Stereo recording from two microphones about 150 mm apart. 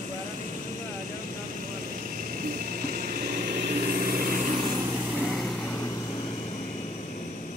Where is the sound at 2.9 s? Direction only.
80° right.